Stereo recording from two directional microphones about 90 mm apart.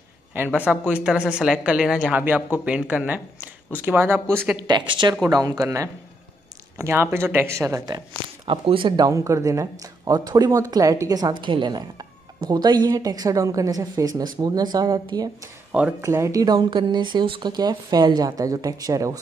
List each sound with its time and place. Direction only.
0.6 s speech: 15° right (ahead or behind)
4.6 s speech: 60° right (ahead or behind)
5.2 s speech: 45° right (ahead or behind)
6.8 s speech: 30° right (ahead or behind)
8.5 s speech: 70° right (ahead or behind)
8.9 s speech: 40° right (ahead or behind)
16.0 s speech: 35° right (ahead or behind)
16.7 s speech: 60° right (ahead or behind); by 19.1 s 40° right (ahead or behind)